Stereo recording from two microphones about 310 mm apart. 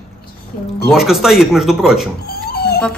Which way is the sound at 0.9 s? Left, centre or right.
Centre.